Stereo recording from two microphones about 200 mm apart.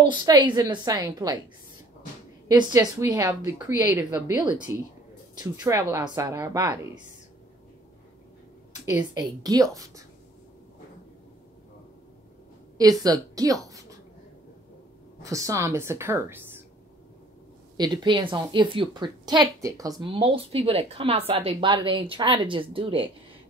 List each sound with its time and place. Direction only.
0.1 s a woman's voice: 25° right (ahead or behind)
2.4 s a woman's voice: 20° right (ahead or behind)
9.1 s a woman's voice: 20° right (ahead or behind)
12.7 s a woman's voice: 20° right (ahead or behind)
15.2 s a woman's voice: 15° right (ahead or behind)
17.7 s a woman's voice: 20° right (ahead or behind)